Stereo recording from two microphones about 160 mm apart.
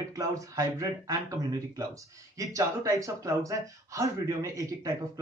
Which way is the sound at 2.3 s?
20° right (ahead or behind).